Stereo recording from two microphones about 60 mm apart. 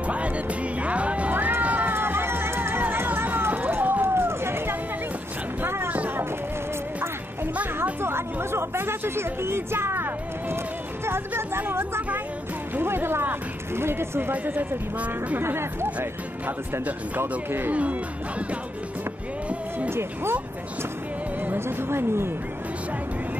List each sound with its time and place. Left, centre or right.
0.0 s music: right
1.3 s run: right
2.8 s run: right
5.6 s a sound: right
5.9 s run: right
8.0 s speech: right
14.3 s speech: right
15.3 s speech: right
19.9 s speech: right
21.5 s speech: right